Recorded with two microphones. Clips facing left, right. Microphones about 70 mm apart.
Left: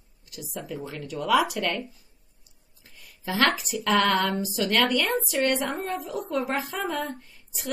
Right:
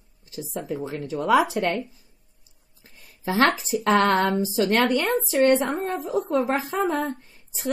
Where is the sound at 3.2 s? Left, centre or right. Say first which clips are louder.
Right 3 dB; right.